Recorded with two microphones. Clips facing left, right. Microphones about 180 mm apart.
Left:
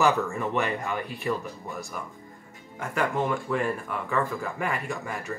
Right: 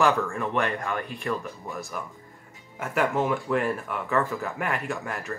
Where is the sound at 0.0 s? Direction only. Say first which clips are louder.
Even; 5° left (ahead or behind).